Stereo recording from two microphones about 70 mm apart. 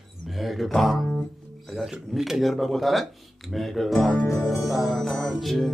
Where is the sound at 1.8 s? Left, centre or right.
Centre.